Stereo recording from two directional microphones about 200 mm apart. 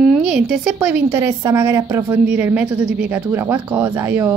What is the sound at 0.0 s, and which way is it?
A woman's voice, 5° right (ahead or behind).